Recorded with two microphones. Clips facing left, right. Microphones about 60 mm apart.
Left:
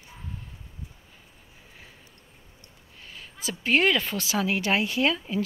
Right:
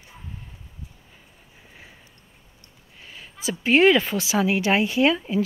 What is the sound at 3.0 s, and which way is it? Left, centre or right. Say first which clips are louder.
A woman's voice: right 5 dB; centre.